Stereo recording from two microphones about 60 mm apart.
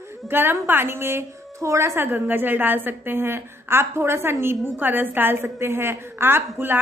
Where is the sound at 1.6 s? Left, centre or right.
Right.